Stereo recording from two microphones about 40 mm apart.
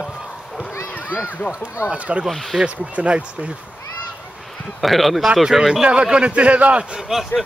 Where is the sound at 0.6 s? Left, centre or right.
Left.